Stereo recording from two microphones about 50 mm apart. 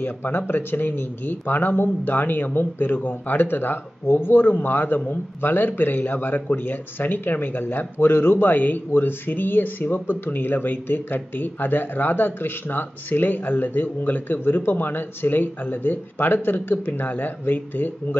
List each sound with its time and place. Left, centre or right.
0.0 s a man's voice: left